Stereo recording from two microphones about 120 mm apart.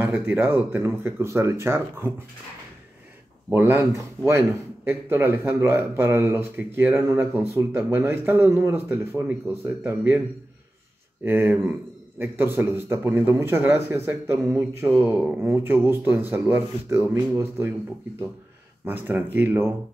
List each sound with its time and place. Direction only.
0.0 s a man's voice: 15° right (ahead or behind)
3.5 s a man's voice: 15° right (ahead or behind)
11.2 s a man's voice: 15° right (ahead or behind)
18.9 s speech: 15° right (ahead or behind)